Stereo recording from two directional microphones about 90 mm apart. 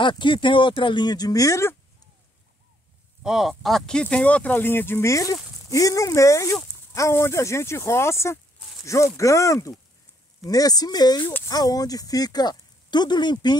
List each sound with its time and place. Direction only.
0.0 s speech: 65° left (ahead or behind); by 1.8 s 35° left (ahead or behind)
3.3 s speech: 5° right (ahead or behind); by 13.6 s 55° left (ahead or behind)